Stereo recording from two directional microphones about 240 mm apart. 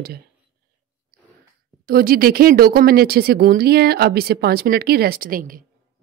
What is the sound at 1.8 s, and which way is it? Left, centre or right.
A woman's voice, right.